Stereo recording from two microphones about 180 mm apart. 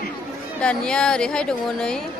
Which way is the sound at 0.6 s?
5° left (ahead or behind).